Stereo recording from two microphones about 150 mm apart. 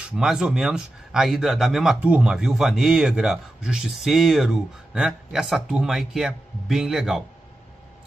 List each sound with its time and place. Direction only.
0.0 s speech: 5° right (ahead or behind)